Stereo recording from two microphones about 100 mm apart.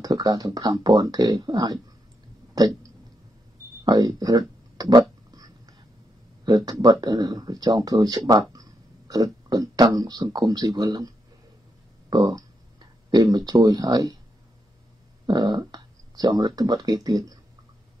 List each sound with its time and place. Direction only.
0.0 s speech: 40° right (ahead or behind)
2.5 s throat clearing: 40° right (ahead or behind)
3.8 s speech: 40° right (ahead or behind)
5.3 s whispering: 40° right (ahead or behind)
6.4 s speech: 45° right (ahead or behind)
15.2 s speech: 45° right (ahead or behind)